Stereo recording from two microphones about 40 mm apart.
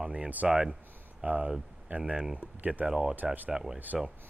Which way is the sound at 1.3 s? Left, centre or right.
Right.